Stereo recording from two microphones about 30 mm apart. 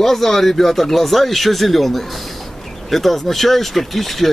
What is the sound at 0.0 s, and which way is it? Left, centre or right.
Speech, centre.